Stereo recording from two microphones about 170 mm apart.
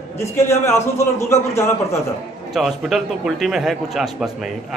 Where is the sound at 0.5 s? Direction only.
15° left (ahead or behind).